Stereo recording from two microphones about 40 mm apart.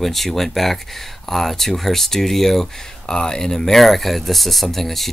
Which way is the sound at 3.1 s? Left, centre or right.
Centre.